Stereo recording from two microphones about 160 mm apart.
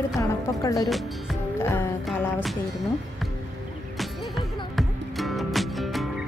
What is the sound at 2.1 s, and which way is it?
Music, 10° left (ahead or behind).